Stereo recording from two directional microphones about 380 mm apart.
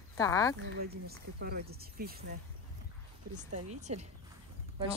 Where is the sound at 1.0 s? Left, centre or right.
Right.